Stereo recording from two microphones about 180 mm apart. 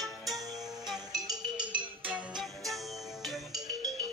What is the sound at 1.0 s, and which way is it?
Music, 20° right (ahead or behind).